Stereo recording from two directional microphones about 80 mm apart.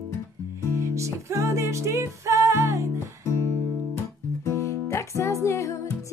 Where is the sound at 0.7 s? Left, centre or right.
Right.